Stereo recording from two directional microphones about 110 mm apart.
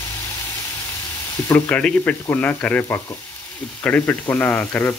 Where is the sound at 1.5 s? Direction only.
10° left (ahead or behind).